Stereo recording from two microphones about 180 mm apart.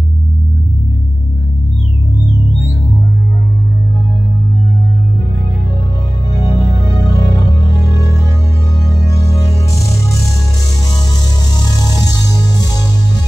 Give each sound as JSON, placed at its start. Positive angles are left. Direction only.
{"t": 6.3, "sound": "music", "side_deg": 20}
{"t": 9.8, "sound": "music", "side_deg": 0}
{"t": 12.1, "sound": "music", "side_deg": 20}